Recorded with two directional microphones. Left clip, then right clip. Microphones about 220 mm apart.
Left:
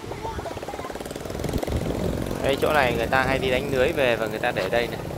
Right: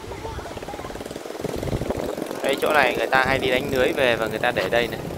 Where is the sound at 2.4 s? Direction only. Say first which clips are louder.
Right 2 dB; 10° left (ahead or behind).